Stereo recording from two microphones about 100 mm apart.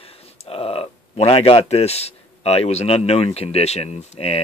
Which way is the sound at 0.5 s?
75° left (ahead or behind).